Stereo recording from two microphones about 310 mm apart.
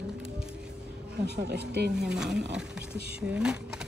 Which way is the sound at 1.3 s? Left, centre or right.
Right.